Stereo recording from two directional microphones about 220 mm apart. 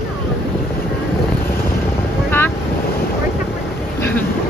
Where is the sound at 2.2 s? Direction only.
10° left (ahead or behind).